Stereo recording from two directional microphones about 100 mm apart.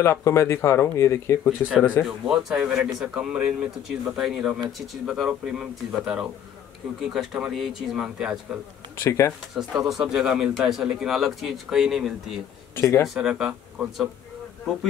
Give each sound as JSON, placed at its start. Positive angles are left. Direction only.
{"t": 0.0, "sound": "speech", "side_deg": 25}
{"t": 2.0, "sound": "a man's voice", "side_deg": -5}
{"t": 9.0, "sound": "speech", "side_deg": 25}
{"t": 9.5, "sound": "speech", "side_deg": -5}
{"t": 12.7, "sound": "speech", "side_deg": 25}
{"t": 13.0, "sound": "speech", "side_deg": -5}